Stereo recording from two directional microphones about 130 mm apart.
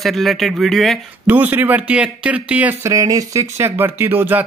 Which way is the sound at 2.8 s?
25° right (ahead or behind).